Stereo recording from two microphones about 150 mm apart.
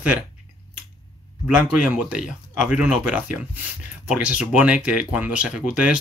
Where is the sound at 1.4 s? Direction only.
5° right (ahead or behind).